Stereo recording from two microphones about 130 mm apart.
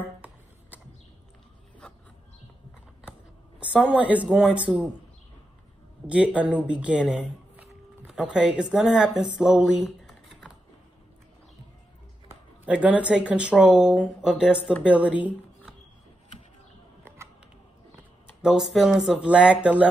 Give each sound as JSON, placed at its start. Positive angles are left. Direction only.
{"t": 3.5, "sound": "speech", "side_deg": -10}
{"t": 6.0, "sound": "speech", "side_deg": -10}
{"t": 12.6, "sound": "speech", "side_deg": -10}
{"t": 17.2, "sound": "a sound", "side_deg": -20}
{"t": 18.4, "sound": "speech", "side_deg": 0}